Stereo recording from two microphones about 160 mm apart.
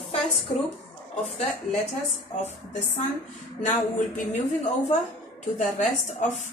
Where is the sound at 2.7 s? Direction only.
45° left (ahead or behind).